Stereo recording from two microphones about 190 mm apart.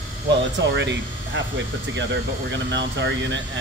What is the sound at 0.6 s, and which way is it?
Speech, 70° right (ahead or behind).